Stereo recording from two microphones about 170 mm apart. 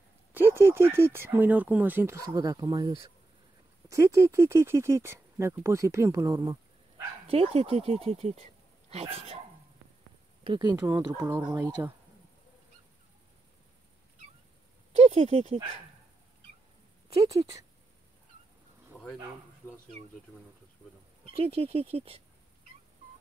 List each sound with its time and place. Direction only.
0.3 s speech: 10° right (ahead or behind)
7.2 s speech: 35° right (ahead or behind)
10.4 s speech: 30° right (ahead or behind)
14.9 s speech: 35° right (ahead or behind)
17.3 s speech: 20° right (ahead or behind)
21.5 s speech: 35° right (ahead or behind)